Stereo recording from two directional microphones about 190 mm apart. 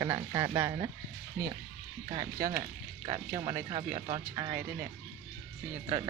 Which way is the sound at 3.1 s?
30° right (ahead or behind).